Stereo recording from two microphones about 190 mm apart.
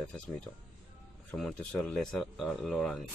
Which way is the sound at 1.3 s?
5° left (ahead or behind).